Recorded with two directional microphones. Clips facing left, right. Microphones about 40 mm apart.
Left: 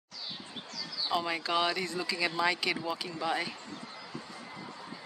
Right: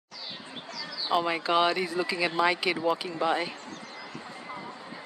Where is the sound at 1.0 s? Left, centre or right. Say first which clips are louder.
Right 5 dB; right.